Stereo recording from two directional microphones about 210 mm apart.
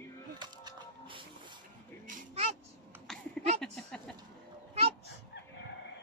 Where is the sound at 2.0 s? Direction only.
35° right (ahead or behind).